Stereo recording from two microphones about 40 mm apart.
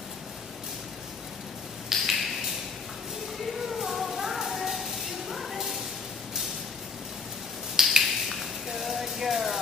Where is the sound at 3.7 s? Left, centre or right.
Centre.